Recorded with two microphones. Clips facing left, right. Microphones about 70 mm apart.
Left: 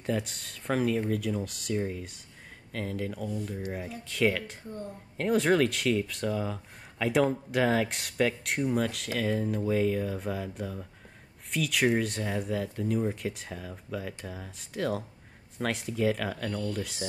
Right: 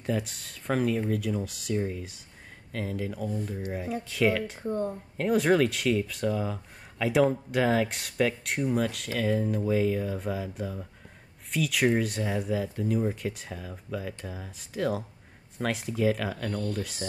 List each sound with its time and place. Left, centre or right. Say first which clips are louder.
0.0 s speech: right 1 dB; centre
4.6 s speech: right 10 dB; right
5.1 s speech: right 1 dB; centre